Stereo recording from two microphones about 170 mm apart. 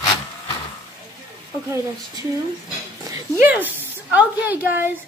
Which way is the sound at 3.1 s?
15° right (ahead or behind).